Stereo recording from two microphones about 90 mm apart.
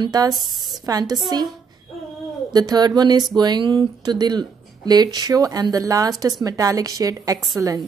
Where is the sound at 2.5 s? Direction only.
50° right (ahead or behind).